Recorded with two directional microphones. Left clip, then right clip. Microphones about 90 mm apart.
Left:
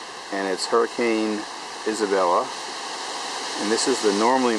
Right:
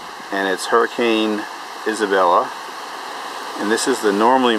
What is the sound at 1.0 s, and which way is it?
Speech, 10° right (ahead or behind).